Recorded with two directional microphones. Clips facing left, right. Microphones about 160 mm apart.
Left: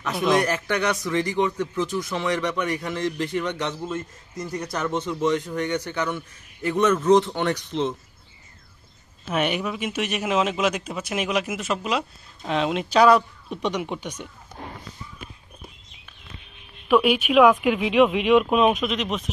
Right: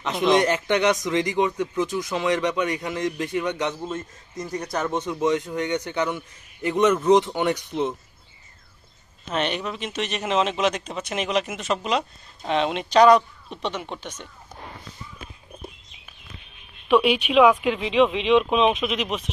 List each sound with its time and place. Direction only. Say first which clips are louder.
0.0 s speech: right 2 dB; 20° right (ahead or behind)
9.3 s speech: left 2 dB; 10° left (ahead or behind)
16.8 s speech: even; centre (ahead or behind)